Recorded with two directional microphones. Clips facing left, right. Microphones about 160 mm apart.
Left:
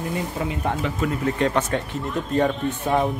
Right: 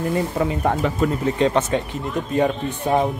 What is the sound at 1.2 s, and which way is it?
Speech, 20° right (ahead or behind).